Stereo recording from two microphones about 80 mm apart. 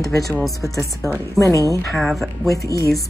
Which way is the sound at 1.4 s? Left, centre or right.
Right.